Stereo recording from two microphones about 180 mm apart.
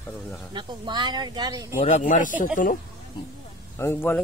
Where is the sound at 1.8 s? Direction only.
40° left (ahead or behind).